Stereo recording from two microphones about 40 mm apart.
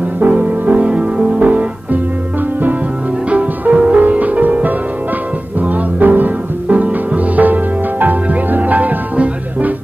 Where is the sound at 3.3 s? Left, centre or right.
Right.